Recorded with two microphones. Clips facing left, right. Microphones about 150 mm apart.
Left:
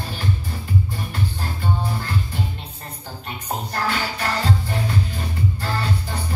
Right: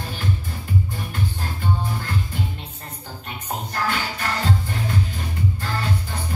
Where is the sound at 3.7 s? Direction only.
40° left (ahead or behind).